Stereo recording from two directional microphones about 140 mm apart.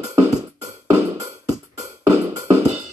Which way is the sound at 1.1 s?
25° right (ahead or behind).